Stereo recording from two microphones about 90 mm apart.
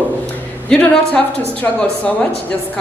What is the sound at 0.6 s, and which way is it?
A man's voice, 10° left (ahead or behind).